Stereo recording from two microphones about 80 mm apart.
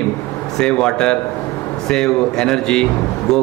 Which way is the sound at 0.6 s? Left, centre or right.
Centre.